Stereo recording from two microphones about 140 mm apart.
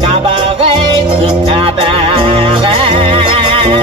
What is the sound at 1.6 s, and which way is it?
Music, 40° right (ahead or behind).